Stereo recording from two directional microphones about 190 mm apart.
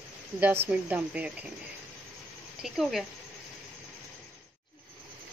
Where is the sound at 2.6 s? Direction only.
Centre (ahead or behind).